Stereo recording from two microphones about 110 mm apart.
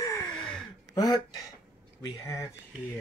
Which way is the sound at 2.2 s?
30° left (ahead or behind).